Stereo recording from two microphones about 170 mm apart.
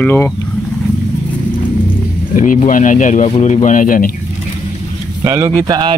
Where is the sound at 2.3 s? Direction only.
50° left (ahead or behind).